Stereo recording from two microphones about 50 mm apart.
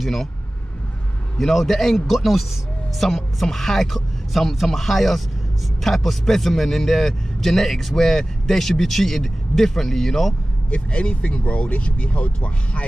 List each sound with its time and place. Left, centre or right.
0.0 s speech: centre
1.4 s a man's voice: centre
10.7 s speech: left